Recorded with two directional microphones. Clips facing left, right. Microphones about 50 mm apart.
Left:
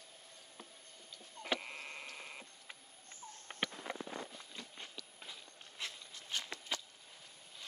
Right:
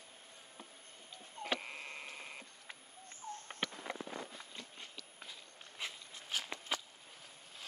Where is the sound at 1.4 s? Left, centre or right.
Centre.